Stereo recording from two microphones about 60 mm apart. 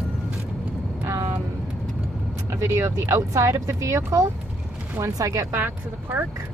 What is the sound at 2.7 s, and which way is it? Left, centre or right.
Speech, right.